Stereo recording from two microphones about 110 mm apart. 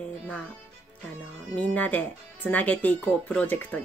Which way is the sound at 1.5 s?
15° left (ahead or behind).